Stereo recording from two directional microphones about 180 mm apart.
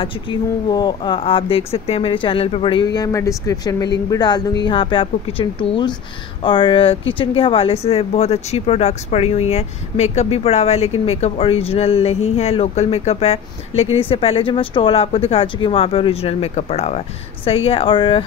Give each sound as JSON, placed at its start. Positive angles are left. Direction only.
{"t": 0.0, "sound": "speech", "side_deg": 25}